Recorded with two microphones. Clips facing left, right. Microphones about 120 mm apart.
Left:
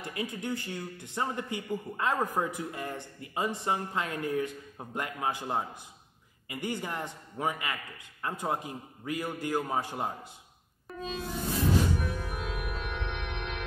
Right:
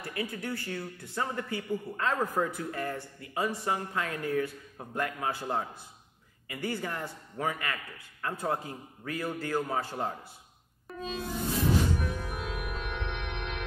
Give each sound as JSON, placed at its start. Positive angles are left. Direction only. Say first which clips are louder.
{"t": 0.0, "sound": "a man's voice", "louder": "even", "side_deg": 20}
{"t": 10.9, "sound": "music", "louder": "right 1 dB", "side_deg": 0}